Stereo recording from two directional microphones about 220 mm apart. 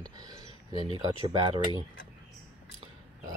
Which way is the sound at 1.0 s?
20° right (ahead or behind).